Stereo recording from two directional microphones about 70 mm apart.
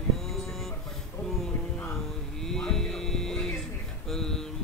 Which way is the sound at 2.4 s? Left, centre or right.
Centre.